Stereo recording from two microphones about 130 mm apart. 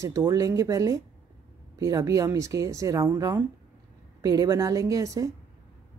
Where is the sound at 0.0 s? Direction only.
25° right (ahead or behind).